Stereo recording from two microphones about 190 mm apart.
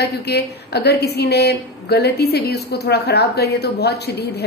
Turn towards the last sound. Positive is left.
turn(degrees=60)  # may be behind; listen again after turning